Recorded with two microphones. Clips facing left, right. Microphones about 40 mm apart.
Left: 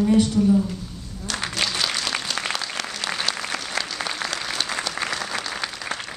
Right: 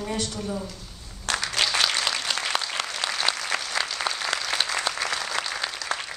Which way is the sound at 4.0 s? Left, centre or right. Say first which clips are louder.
Even; centre.